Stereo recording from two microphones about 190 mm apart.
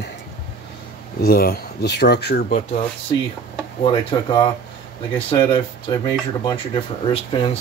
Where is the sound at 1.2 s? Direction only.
55° left (ahead or behind).